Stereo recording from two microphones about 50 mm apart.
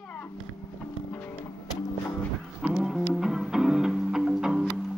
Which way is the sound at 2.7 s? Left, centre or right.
Centre.